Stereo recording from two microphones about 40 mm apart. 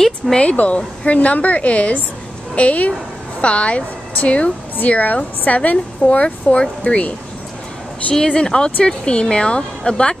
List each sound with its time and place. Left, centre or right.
0.3 s a woman's voice: left
8.1 s speech: centre